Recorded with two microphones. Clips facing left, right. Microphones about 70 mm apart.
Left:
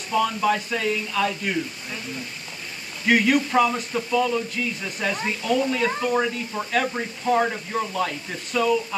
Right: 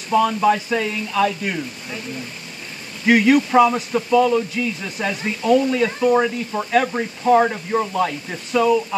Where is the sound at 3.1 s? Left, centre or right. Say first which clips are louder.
Right 5 dB; centre.